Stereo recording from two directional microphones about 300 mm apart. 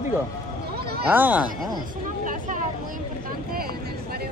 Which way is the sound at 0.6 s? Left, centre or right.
Right.